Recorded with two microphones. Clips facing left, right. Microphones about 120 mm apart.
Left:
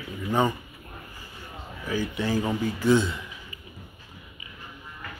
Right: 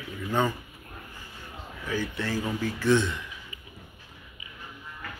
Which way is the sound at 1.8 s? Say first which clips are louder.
Left 3 dB; 10° left (ahead or behind).